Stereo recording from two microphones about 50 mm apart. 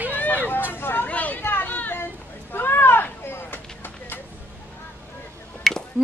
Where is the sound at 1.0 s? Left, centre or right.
Left.